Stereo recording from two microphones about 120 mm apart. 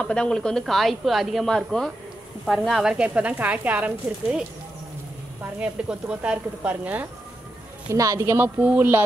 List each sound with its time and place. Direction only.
0.0 s speech: 10° left (ahead or behind); by 4.5 s 10° right (ahead or behind)
5.6 s speech: 10° right (ahead or behind)
7.9 s speech: 25° right (ahead or behind)